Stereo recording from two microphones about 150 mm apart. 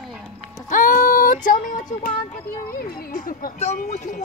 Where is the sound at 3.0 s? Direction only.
65° left (ahead or behind).